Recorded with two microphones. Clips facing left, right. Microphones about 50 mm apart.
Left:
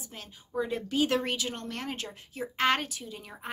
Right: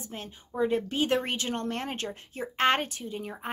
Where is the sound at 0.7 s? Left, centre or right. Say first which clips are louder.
Right 2 dB; right.